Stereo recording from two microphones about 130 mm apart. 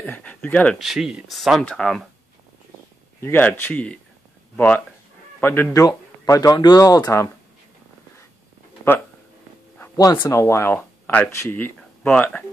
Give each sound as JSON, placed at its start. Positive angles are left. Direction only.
{"t": 0.0, "sound": "speech", "side_deg": 10}
{"t": 0.7, "sound": "speech", "side_deg": 0}
{"t": 3.2, "sound": "speech", "side_deg": 15}
{"t": 5.7, "sound": "speech", "side_deg": 30}
{"t": 9.9, "sound": "speech", "side_deg": 30}